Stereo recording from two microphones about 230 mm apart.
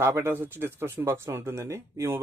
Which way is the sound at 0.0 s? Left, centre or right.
Centre.